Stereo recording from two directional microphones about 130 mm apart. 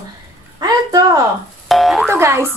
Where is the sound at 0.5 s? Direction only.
30° right (ahead or behind).